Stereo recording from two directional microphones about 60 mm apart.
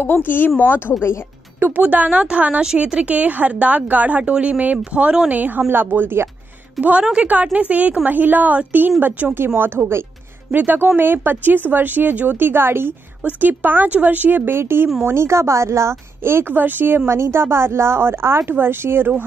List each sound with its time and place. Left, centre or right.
0.0 s speech: left
1.8 s a woman's voice: right
5.3 s a woman's voice: right
6.8 s a woman's voice: right
13.2 s a woman's voice: right